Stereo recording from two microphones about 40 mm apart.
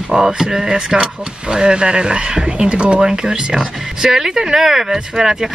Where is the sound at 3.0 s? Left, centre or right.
Centre.